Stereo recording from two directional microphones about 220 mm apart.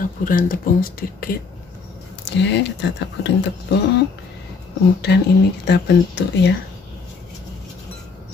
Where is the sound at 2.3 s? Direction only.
50° left (ahead or behind).